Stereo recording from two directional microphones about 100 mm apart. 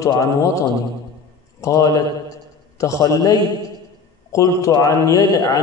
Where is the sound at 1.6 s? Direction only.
35° left (ahead or behind).